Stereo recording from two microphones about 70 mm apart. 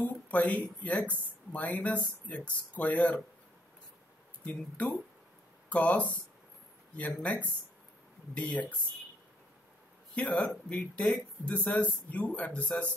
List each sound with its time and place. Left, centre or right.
0.0 s speech: left
4.5 s speech: centre
10.1 s speech: left